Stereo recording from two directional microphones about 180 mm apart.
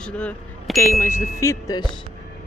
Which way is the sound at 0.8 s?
15° left (ahead or behind).